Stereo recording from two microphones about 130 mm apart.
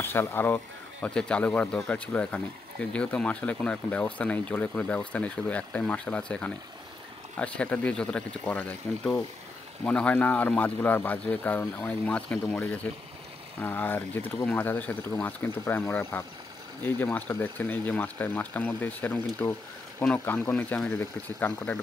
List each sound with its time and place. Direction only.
0.0 s speech: 15° left (ahead or behind)